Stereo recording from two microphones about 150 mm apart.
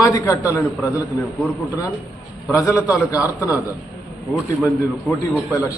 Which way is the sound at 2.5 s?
20° left (ahead or behind).